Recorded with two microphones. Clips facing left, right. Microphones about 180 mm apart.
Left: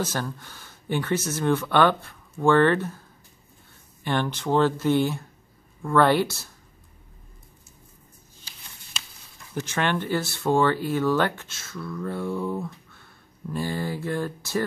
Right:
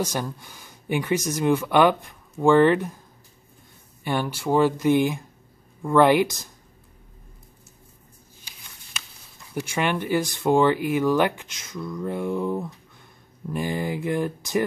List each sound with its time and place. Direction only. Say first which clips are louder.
0.0 s speech: right 1 dB; 15° right (ahead or behind)
4.0 s speech: even; 10° right (ahead or behind)
9.5 s speech: right 1 dB; 10° right (ahead or behind)